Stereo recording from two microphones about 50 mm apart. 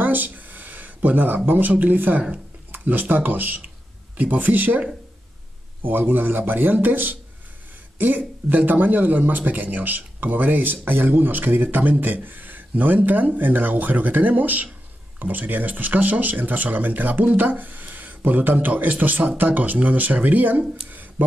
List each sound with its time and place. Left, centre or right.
0.0 s a sound: right
1.8 s speech: right
5.9 s speech: right
8.5 s speech: right